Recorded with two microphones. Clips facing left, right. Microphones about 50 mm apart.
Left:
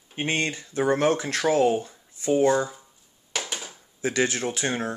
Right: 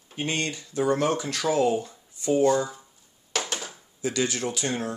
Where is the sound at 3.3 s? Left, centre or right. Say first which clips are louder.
Right 2 dB; centre.